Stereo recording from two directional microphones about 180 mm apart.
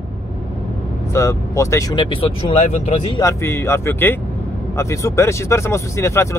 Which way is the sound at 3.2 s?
15° left (ahead or behind).